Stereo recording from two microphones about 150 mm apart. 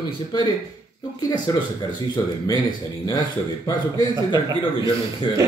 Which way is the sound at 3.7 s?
30° left (ahead or behind).